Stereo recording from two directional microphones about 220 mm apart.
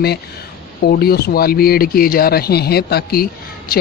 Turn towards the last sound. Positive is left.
turn(degrees=40)  # may be behind; listen again after turning